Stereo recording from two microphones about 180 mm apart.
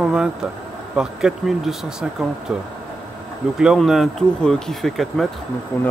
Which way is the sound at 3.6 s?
5° right (ahead or behind).